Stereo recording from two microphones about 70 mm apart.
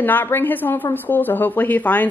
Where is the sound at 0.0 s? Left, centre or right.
Left.